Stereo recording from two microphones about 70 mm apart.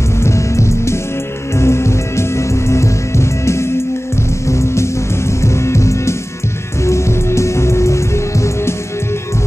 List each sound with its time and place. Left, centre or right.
0.2 s music: left